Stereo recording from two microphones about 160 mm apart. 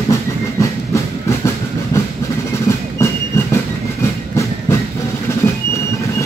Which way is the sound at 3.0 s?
20° left (ahead or behind).